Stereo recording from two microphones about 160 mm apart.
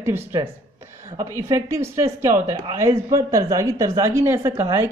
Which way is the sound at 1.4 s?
20° right (ahead or behind).